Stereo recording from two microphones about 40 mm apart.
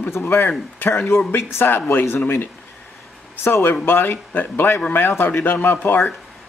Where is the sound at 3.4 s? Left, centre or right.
Left.